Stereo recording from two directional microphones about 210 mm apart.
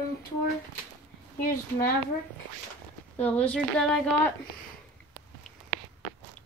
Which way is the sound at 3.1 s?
10° left (ahead or behind).